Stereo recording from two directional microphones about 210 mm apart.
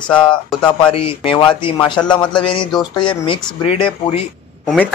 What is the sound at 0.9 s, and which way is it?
Speech, 25° left (ahead or behind).